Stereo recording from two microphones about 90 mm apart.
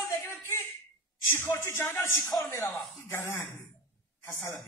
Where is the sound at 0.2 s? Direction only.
30° left (ahead or behind).